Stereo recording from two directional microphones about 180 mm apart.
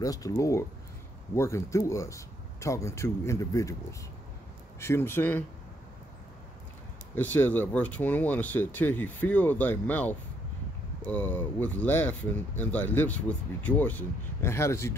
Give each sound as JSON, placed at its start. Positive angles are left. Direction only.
{"t": 0.0, "sound": "speech", "side_deg": 20}
{"t": 4.7, "sound": "speech", "side_deg": 15}
{"t": 7.2, "sound": "speech", "side_deg": 10}